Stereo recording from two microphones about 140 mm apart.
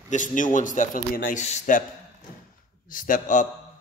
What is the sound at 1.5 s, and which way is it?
Speech, 70° left (ahead or behind).